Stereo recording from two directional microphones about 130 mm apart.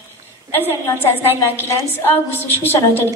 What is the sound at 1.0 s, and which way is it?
A woman's voice, 20° left (ahead or behind).